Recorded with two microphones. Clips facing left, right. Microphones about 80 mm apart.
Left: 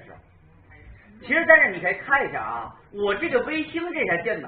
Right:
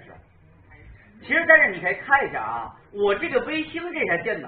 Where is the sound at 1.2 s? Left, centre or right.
Centre.